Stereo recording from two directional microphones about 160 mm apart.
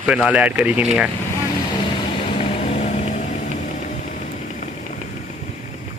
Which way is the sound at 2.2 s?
40° left (ahead or behind).